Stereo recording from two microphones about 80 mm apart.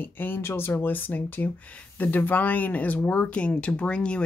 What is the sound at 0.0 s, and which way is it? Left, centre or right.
Speech, left.